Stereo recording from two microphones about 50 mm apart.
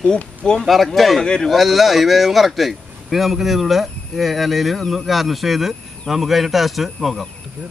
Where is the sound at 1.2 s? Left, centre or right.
Centre.